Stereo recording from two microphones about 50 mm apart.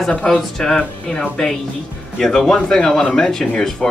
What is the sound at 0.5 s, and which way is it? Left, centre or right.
Speech, centre.